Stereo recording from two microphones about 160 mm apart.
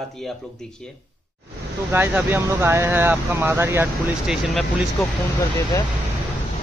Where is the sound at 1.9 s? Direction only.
15° right (ahead or behind).